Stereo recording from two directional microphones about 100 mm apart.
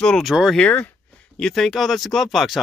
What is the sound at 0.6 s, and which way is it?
Speech, 15° left (ahead or behind).